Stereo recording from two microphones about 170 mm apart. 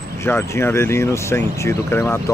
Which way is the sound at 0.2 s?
15° left (ahead or behind).